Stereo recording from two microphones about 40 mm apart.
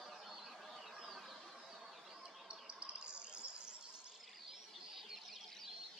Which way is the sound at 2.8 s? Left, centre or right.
Right.